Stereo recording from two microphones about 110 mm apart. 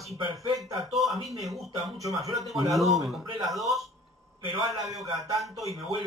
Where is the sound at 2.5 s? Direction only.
Centre (ahead or behind).